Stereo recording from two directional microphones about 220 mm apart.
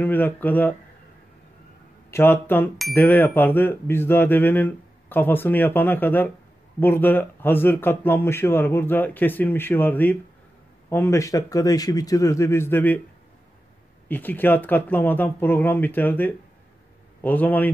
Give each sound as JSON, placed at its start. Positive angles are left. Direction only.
{"t": 0.0, "sound": "speech", "side_deg": 10}
{"t": 2.0, "sound": "speech", "side_deg": 10}
{"t": 14.0, "sound": "speech", "side_deg": 10}